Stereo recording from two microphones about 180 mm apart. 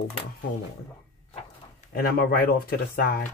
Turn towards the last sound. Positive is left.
turn(degrees=55)  # may be behind; listen again after turning